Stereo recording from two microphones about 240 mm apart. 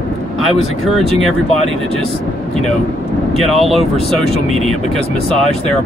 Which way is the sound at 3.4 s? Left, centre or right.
Centre.